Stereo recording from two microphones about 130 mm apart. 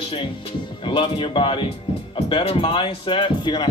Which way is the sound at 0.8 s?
40° left (ahead or behind).